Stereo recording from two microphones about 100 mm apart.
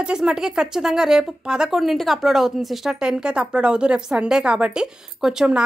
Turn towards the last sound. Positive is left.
turn(degrees=-5)  # may be behind; listen again after turning